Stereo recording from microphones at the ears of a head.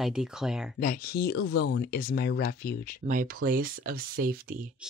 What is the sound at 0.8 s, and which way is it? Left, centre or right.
Speech, left.